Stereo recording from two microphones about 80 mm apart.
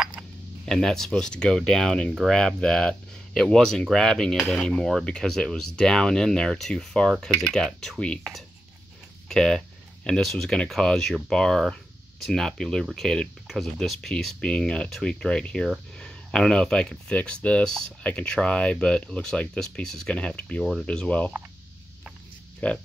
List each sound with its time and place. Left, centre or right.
0.2 s a sound: right
0.7 s speech: centre
9.3 s speech: centre
22.6 s speech: centre